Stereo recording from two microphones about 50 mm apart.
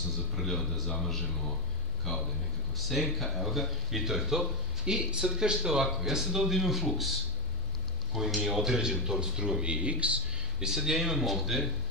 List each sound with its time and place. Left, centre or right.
0.4 s a man's voice: centre
2.7 s speech: centre
4.8 s speech: centre
9.7 s speech: right
10.6 s speech: centre